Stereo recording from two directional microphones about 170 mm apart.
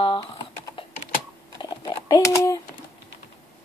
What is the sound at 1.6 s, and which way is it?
Typing, 25° left (ahead or behind).